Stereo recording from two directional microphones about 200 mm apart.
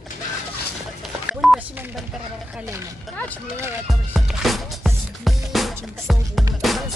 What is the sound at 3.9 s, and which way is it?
Music, centre (ahead or behind).